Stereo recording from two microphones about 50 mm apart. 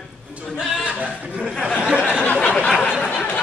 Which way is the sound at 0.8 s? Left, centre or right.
Right.